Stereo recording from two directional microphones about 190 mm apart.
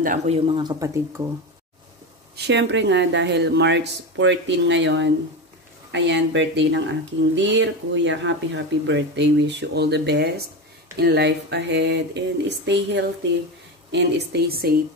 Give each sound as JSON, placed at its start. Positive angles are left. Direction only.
{"t": 0.0, "sound": "speech", "side_deg": -40}
{"t": 2.3, "sound": "speech", "side_deg": -65}